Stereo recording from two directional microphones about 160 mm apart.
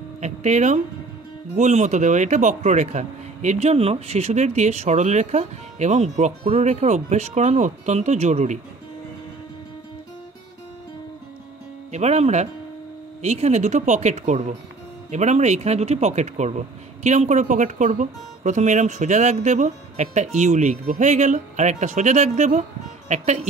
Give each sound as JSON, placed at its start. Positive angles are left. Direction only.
{"t": 0.2, "sound": "speech", "side_deg": -45}
{"t": 11.9, "sound": "speech", "side_deg": -45}